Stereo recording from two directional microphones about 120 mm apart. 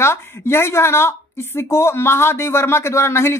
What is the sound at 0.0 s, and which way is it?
Speech, 20° left (ahead or behind).